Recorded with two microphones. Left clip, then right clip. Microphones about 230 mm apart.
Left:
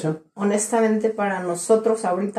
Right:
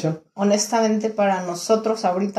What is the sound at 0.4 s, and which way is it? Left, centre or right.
A woman's voice, right.